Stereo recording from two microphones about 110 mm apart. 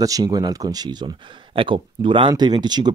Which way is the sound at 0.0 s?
35° right (ahead or behind).